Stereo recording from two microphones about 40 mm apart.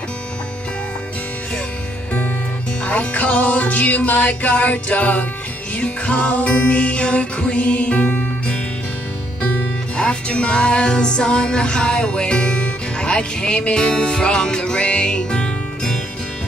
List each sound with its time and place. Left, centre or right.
2.8 s music: left
9.9 s music: left